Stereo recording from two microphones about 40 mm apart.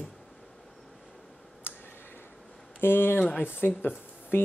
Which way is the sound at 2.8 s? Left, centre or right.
Left.